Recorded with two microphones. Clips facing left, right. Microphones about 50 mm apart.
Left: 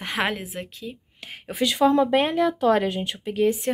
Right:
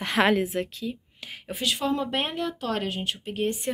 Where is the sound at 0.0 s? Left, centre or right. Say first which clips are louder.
Right 3 dB; centre.